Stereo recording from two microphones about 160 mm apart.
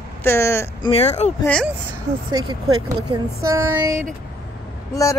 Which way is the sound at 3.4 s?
15° right (ahead or behind).